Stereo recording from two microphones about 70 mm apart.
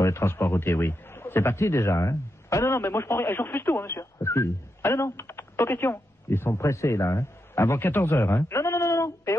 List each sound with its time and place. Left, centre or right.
0.0 s a man's voice: left